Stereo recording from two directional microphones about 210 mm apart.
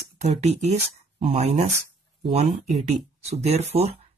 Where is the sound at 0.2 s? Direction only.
30° right (ahead or behind).